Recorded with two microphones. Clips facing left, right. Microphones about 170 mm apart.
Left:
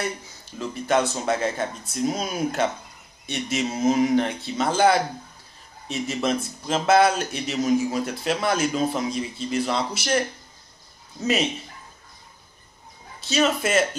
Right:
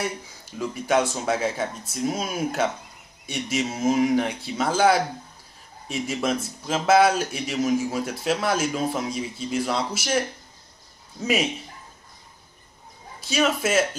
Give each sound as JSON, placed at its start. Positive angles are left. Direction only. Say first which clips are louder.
{"t": 0.6, "sound": "speech", "louder": "even", "side_deg": -10}
{"t": 13.3, "sound": "speech", "louder": "left 1 dB", "side_deg": -5}